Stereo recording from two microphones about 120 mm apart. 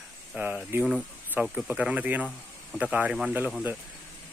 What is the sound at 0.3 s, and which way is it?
Speech, 10° right (ahead or behind).